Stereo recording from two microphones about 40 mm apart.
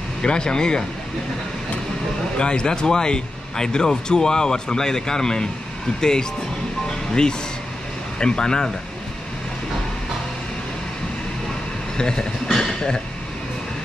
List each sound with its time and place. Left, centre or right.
0.2 s speech: left
2.3 s speech: left
8.2 s speech: centre
12.0 s speech: left
12.4 s a sound: centre